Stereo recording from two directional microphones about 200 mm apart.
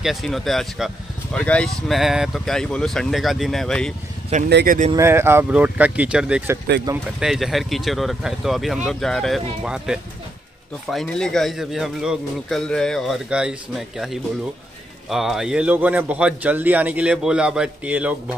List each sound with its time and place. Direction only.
0.0 s speech: centre (ahead or behind)
4.5 s speech: 60° right (ahead or behind)
4.9 s speech: 10° right (ahead or behind)